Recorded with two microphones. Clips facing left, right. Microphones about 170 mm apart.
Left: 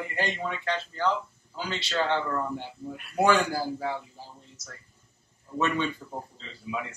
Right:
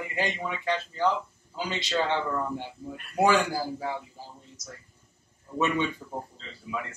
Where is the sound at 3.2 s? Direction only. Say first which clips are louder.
Even; 10° right (ahead or behind).